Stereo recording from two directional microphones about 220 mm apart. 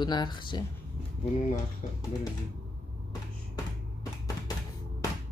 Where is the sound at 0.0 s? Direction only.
20° left (ahead or behind).